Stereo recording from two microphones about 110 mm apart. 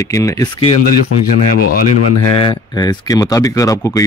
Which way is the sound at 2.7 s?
35° left (ahead or behind).